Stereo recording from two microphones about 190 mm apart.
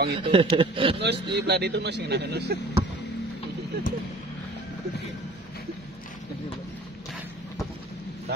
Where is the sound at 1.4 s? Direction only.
60° right (ahead or behind).